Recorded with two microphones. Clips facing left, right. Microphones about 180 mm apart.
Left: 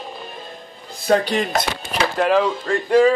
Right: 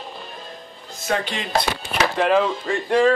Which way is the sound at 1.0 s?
40° left (ahead or behind).